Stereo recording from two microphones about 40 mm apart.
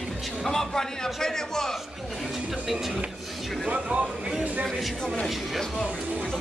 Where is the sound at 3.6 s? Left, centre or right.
Right.